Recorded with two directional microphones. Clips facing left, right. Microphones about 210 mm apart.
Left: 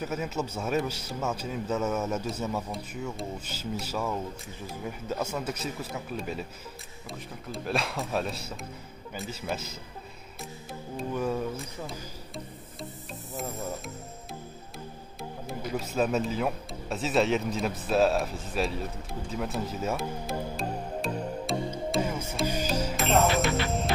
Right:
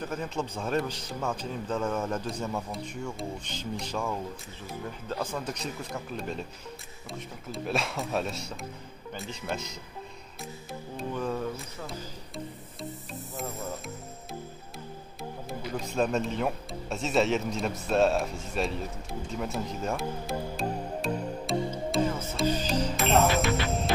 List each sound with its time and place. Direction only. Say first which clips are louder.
0.0 s a man's voice: left 1 dB; 5° left (ahead or behind)
12.8 s music: right 3 dB; centre (ahead or behind)
15.4 s a man's voice: left 2 dB; centre (ahead or behind)
19.3 s music: left 1 dB; centre (ahead or behind)
22.1 s music: right 2 dB; 10° left (ahead or behind)